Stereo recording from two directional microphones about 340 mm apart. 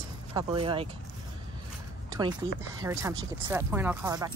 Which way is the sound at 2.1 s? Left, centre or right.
Centre.